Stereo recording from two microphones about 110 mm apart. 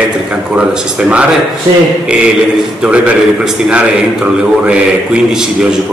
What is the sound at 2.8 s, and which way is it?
A man's voice, 10° right (ahead or behind).